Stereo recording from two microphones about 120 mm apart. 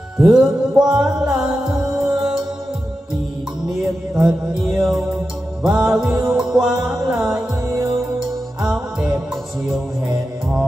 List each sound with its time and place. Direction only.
0.3 s music: 5° right (ahead or behind)
4.2 s music: 5° right (ahead or behind)
7.6 s music: 25° right (ahead or behind)
8.6 s music: 5° right (ahead or behind)